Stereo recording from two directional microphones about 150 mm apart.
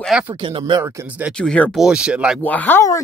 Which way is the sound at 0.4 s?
30° right (ahead or behind).